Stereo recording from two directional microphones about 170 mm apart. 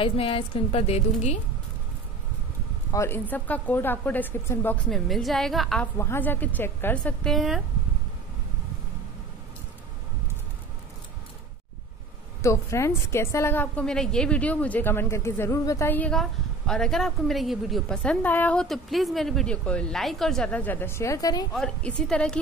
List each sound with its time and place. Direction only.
0.0 s a woman's voice: 35° left (ahead or behind)
2.9 s a woman's voice: 15° left (ahead or behind)
5.9 s a woman's voice: 15° left (ahead or behind)
12.4 s a woman's voice: 15° left (ahead or behind)
21.5 s a woman's voice: 5° left (ahead or behind)